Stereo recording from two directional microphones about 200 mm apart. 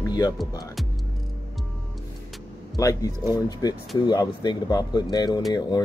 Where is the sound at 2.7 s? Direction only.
15° left (ahead or behind).